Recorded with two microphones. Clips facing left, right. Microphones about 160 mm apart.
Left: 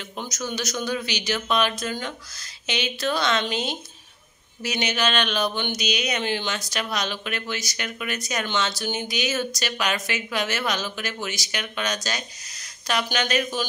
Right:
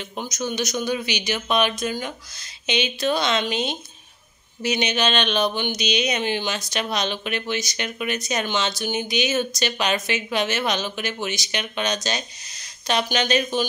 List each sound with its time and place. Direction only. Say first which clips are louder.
0.1 s a man's voice: right 2 dB; 20° right (ahead or behind)